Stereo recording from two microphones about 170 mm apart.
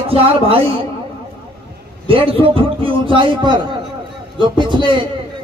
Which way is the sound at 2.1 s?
30° right (ahead or behind).